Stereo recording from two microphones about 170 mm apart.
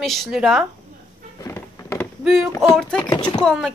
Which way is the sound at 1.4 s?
15° left (ahead or behind).